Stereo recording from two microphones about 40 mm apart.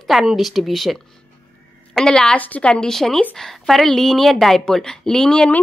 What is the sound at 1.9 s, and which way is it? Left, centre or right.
Speech, centre.